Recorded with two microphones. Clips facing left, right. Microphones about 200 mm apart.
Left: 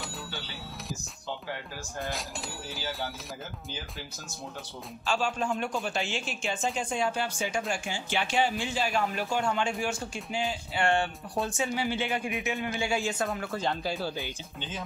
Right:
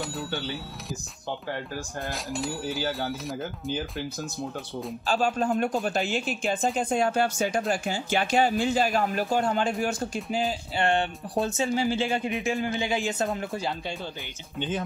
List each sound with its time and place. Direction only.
0.0 s a sound: centre (ahead or behind)
2.0 s speech: centre (ahead or behind)
5.0 s speech: 35° right (ahead or behind)
10.8 s speech: 20° right (ahead or behind)